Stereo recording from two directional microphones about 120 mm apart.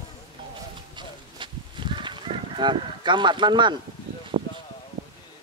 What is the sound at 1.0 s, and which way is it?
Livestock, 40° right (ahead or behind).